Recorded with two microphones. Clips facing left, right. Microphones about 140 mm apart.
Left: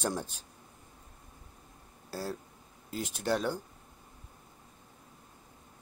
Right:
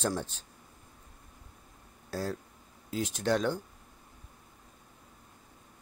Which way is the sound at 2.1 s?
5° left (ahead or behind).